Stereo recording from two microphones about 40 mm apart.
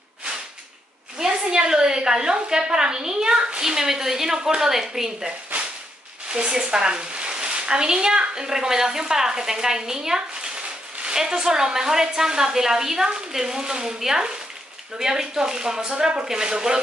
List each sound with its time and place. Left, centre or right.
1.1 s a woman's voice: centre